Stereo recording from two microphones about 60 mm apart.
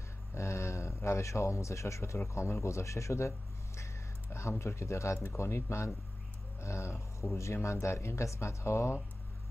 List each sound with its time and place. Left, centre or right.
0.3 s speech: left